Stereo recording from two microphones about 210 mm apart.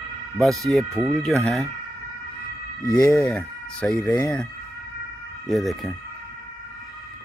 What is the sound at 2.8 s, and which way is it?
Speech, 15° left (ahead or behind).